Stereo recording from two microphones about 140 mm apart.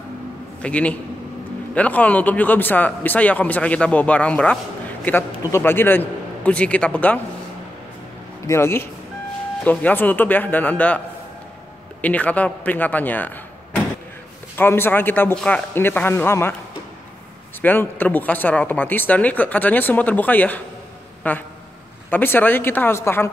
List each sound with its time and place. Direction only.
0.6 s a man's voice: 10° left (ahead or behind)
8.5 s speech: 20° left (ahead or behind)
12.0 s speech: 10° left (ahead or behind)
14.6 s speech: 15° left (ahead or behind)
17.6 s speech: 15° left (ahead or behind)